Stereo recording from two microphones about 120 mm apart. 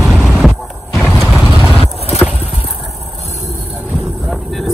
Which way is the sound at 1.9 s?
60° left (ahead or behind).